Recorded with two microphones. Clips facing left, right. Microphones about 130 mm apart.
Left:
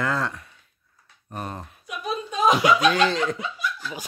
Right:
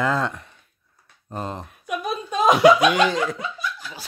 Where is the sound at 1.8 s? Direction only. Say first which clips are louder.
Right 3 dB; 55° right (ahead or behind).